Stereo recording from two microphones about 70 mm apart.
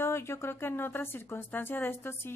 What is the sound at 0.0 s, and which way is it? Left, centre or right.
Speech, left.